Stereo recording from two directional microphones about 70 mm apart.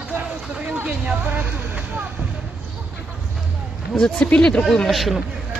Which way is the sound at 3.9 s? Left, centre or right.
Centre.